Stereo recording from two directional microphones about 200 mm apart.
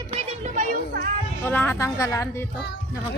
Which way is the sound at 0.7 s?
50° right (ahead or behind).